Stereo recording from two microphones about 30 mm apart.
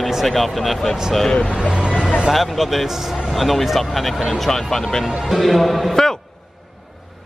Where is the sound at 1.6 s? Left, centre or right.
Right.